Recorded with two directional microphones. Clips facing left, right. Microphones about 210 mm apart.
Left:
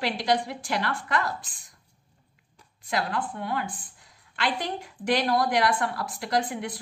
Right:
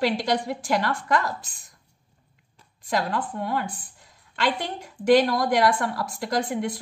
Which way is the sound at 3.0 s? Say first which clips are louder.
Right 2 dB; 40° right (ahead or behind).